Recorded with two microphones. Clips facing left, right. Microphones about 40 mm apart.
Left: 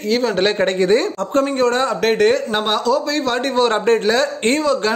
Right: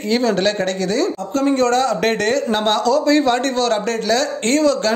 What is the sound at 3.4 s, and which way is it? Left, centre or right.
Speech, centre.